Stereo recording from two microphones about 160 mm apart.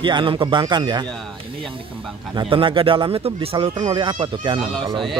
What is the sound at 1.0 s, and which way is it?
Speech, 5° left (ahead or behind).